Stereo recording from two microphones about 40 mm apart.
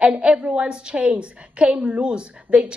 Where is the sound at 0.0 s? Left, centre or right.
Right.